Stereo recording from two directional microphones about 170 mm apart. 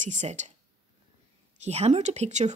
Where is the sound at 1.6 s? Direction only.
40° right (ahead or behind).